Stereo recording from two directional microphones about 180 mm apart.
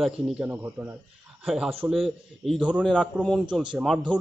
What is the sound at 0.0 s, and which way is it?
A man's voice, 5° right (ahead or behind).